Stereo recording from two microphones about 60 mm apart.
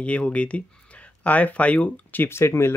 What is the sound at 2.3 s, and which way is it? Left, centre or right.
Speech, left.